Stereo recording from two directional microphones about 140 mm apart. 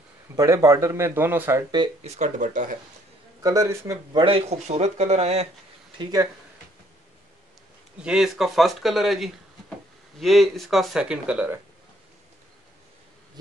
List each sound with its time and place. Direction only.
0.4 s speech: 25° right (ahead or behind)
2.0 s speech: 55° right (ahead or behind)
3.4 s speech: 25° right (ahead or behind)
4.2 s speech: 40° right (ahead or behind)
8.0 s speech: 5° right (ahead or behind)